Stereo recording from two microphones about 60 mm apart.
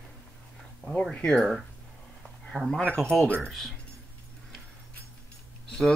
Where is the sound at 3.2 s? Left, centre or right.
Centre.